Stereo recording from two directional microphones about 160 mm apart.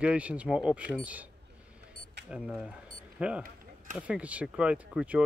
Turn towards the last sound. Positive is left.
turn(degrees=-5)  # may be behind; listen again after turning